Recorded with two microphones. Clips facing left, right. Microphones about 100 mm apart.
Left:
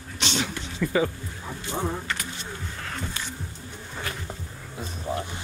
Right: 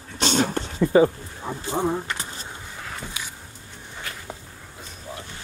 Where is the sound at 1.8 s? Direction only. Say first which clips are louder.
Right 4 dB; 15° right (ahead or behind).